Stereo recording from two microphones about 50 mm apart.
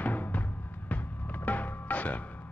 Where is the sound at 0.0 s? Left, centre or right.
Left.